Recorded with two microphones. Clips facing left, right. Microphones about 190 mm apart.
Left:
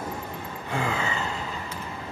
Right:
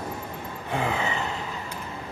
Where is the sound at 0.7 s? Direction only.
20° right (ahead or behind).